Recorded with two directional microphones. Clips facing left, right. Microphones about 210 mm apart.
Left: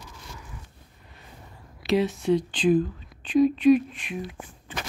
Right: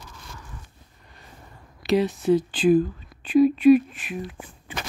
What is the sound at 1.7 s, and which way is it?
Speech, centre (ahead or behind).